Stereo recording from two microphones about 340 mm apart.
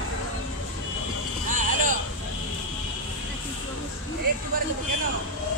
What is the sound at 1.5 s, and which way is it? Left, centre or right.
Vehicle, right.